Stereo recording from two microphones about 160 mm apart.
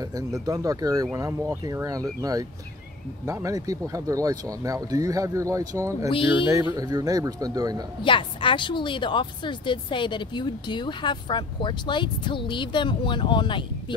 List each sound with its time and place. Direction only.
0.0 s speech: 20° right (ahead or behind)
3.3 s speech: 20° right (ahead or behind)
6.1 s speech: 35° left (ahead or behind)
6.7 s speech: 25° right (ahead or behind)
8.0 s a woman's voice: 30° left (ahead or behind)